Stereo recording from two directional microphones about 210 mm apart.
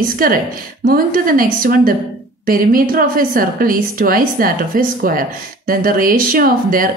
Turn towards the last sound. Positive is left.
turn(degrees=-40)  # may be behind; listen again after turning